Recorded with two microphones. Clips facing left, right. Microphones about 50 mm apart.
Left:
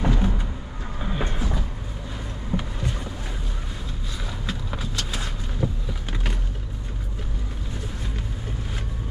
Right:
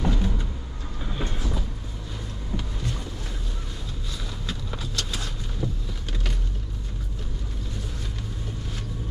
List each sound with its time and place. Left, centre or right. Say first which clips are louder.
0.0 s vehicle: left 2 dB; left
1.0 s train: left 3 dB; left
2.5 s a sound: left 4 dB; left
4.5 s vehicle: left 3 dB; centre